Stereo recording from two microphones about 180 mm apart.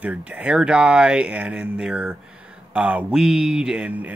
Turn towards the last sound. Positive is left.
turn(degrees=-5)  # may be behind; listen again after turning